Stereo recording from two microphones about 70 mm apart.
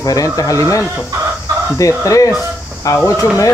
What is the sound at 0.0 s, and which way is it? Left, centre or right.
Speech, left.